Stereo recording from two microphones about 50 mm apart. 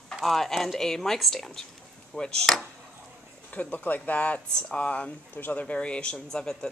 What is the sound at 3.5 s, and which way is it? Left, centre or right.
Speech, left.